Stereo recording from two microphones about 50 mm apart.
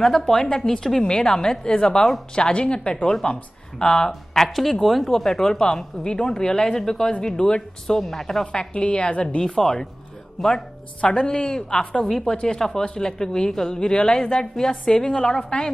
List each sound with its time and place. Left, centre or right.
0.0 s speech: centre
8.5 s speech: centre
11.0 s speech: centre
11.7 s speech: left
12.0 s speech: centre